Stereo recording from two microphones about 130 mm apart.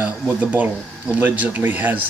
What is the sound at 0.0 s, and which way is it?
Speech, 10° right (ahead or behind).